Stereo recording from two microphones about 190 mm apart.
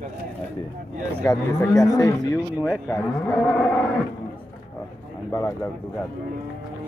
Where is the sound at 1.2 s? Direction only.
15° left (ahead or behind).